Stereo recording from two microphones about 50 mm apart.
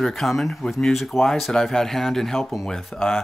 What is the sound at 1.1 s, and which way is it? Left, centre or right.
Speech, left.